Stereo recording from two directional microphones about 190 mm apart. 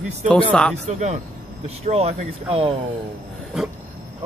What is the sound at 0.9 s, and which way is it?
Speech, 35° right (ahead or behind).